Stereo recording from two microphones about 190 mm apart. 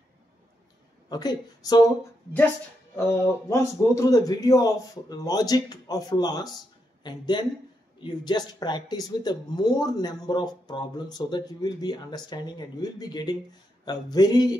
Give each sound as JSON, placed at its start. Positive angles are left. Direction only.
{"t": 1.0, "sound": "speech", "side_deg": 20}
{"t": 3.4, "sound": "speech", "side_deg": 15}